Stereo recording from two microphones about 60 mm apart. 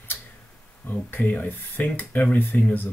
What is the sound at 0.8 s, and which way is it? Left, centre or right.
Speech, left.